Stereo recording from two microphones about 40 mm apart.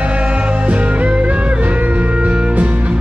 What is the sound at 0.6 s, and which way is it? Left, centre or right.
Music, right.